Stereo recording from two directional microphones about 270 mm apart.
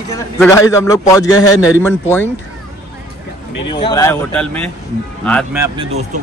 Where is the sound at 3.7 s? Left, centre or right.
Centre.